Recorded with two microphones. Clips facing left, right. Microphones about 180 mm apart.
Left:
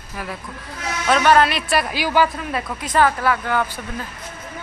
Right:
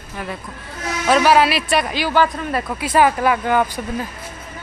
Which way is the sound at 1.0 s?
5° right (ahead or behind).